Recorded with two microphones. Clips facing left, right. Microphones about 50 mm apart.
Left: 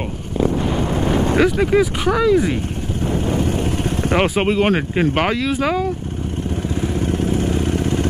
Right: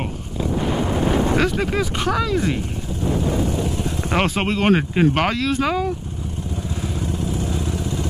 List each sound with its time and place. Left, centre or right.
1.4 s speech: centre
4.1 s speech: centre
6.8 s vehicle: left